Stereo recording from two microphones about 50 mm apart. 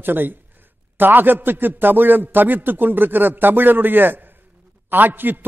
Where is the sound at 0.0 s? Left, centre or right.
Right.